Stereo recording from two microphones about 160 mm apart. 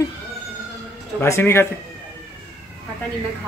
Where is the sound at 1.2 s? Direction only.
15° left (ahead or behind).